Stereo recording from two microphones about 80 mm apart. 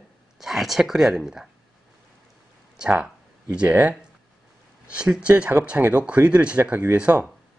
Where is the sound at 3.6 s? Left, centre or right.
Centre.